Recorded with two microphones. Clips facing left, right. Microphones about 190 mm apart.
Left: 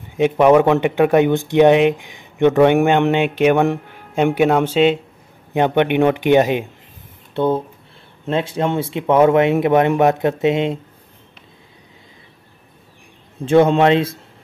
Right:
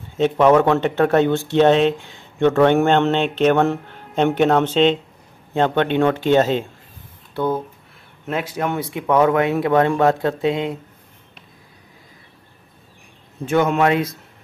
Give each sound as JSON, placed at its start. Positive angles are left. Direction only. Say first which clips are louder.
{"t": 0.1, "sound": "speech", "louder": "left 2 dB", "side_deg": 15}
{"t": 7.3, "sound": "speech", "louder": "left 4 dB", "side_deg": 25}
{"t": 13.5, "sound": "speech", "louder": "left 5 dB", "side_deg": 30}